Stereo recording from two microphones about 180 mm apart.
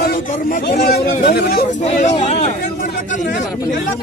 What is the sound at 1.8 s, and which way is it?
Speech, 35° left (ahead or behind).